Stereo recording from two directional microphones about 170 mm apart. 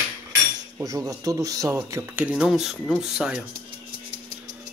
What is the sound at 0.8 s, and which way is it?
Speech, 20° right (ahead or behind).